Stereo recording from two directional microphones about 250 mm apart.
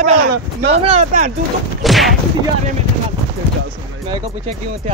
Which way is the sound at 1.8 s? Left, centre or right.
Centre.